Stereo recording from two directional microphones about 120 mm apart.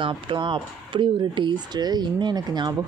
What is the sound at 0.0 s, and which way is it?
Speech, 40° right (ahead or behind).